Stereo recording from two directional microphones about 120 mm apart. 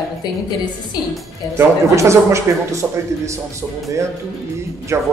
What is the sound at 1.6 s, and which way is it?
A man's voice, 25° right (ahead or behind).